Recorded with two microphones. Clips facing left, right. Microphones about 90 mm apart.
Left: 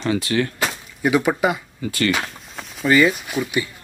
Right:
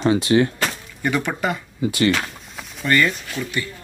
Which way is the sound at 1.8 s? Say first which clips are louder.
Right 3 dB; 20° right (ahead or behind).